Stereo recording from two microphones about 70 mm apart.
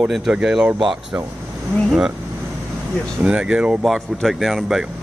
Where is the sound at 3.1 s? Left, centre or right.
Centre.